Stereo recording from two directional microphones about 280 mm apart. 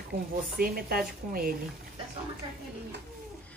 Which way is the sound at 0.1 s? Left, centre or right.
Right.